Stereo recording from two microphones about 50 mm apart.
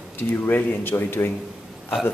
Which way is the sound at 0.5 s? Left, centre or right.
Left.